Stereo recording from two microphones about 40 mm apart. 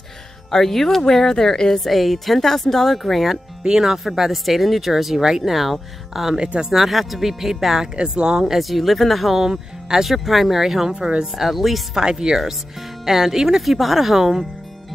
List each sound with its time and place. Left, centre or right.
0.5 s a woman's voice: centre
3.6 s speech: centre
6.3 s speech: centre
6.7 s speech: centre
7.9 s speech: right
8.5 s speech: centre
9.5 s speech: centre
10.0 s speech: centre
10.9 s speech: right
11.3 s speech: centre
12.0 s speech: centre